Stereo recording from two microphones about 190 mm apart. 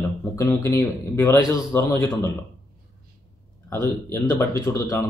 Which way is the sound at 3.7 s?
15° left (ahead or behind).